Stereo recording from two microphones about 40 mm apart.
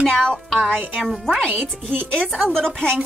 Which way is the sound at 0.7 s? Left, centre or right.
Right.